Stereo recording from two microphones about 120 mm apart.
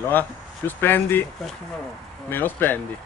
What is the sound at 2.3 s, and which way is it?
Speech, 15° left (ahead or behind).